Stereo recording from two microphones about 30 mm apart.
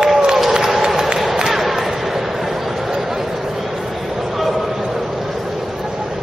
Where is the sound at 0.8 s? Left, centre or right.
Centre.